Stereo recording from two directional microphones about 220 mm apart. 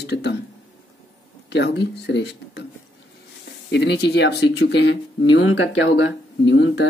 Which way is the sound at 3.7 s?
50° left (ahead or behind).